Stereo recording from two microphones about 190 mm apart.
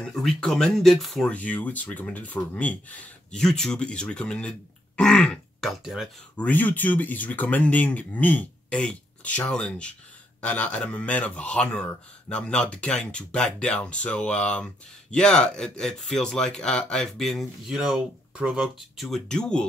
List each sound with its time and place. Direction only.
0.0 s speech: centre (ahead or behind)